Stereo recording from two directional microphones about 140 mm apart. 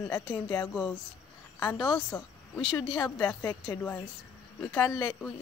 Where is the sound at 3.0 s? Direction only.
15° left (ahead or behind).